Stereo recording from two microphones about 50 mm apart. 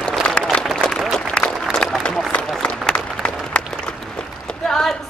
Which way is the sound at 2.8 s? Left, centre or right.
Left.